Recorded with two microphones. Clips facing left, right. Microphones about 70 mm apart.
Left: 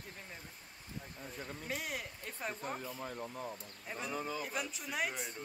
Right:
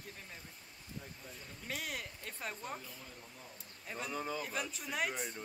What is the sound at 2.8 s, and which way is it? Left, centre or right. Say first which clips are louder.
Speech: left 10 dB; left.